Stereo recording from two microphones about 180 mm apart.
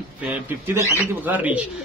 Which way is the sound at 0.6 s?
15° right (ahead or behind).